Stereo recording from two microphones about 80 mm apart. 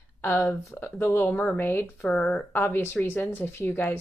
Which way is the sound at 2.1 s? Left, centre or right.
Centre.